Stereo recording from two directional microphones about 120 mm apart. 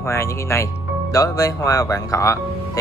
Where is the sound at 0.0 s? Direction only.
25° left (ahead or behind).